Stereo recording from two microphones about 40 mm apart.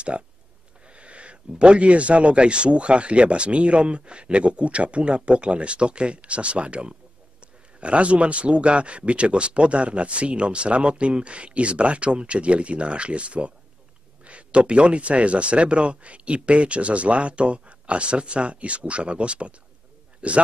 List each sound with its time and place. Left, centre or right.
0.1 s a man's voice: right